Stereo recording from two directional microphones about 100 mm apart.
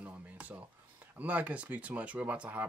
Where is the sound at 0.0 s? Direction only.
15° right (ahead or behind).